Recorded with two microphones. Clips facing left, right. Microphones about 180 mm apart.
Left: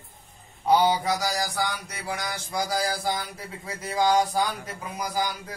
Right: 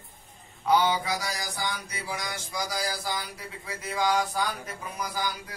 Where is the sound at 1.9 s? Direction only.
60° left (ahead or behind); by 4.4 s 35° left (ahead or behind).